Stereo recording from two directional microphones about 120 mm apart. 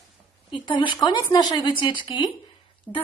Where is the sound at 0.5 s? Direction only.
40° left (ahead or behind).